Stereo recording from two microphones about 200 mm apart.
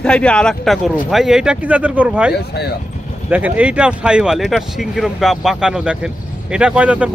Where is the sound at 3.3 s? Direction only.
10° right (ahead or behind).